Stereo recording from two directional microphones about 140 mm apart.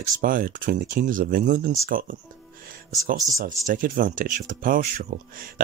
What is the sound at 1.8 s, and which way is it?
Speech, 85° right.